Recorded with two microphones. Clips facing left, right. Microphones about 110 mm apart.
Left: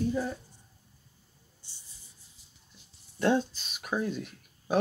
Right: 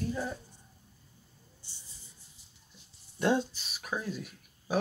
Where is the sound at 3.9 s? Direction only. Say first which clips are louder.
Left 5 dB; 15° left (ahead or behind).